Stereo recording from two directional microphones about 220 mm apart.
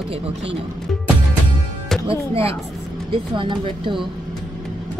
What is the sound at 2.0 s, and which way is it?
Speech, 25° right (ahead or behind).